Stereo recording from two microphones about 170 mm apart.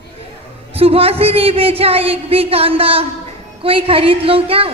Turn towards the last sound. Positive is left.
turn(degrees=-35)  # may be behind; listen again after turning